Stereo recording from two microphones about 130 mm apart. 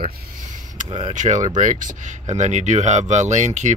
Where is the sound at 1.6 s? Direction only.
85° right; by 3.7 s 65° right (ahead or behind).